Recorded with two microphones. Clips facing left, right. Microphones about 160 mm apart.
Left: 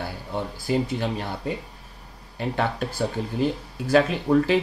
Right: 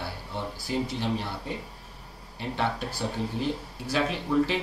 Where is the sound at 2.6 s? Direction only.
50° left (ahead or behind).